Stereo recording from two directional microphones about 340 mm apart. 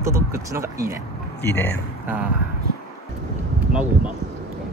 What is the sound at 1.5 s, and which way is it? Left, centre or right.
Speech, left.